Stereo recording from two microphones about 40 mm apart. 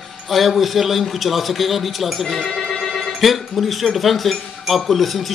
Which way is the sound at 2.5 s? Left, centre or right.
Left.